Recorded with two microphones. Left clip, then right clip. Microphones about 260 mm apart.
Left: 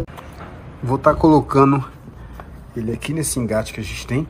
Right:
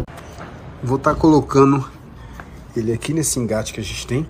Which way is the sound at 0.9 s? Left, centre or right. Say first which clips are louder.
Left 1 dB; centre.